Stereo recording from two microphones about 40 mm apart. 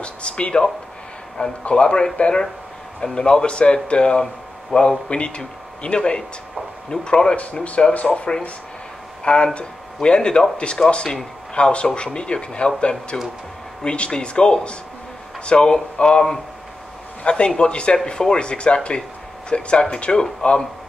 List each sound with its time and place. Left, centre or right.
0.0 s a sound: left
1.6 s speech: left
7.3 s speech: left